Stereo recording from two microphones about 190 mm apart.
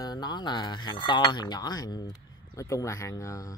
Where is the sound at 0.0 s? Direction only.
20° left (ahead or behind).